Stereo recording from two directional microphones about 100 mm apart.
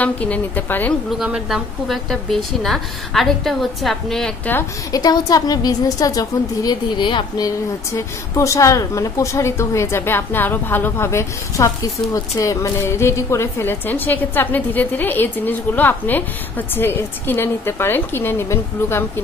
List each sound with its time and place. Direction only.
0.0 s a woman's voice: 15° left (ahead or behind)
1.1 s a woman's voice: 5° right (ahead or behind)
4.9 s a woman's voice: 40° left (ahead or behind)
7.4 s a woman's voice: 30° left (ahead or behind)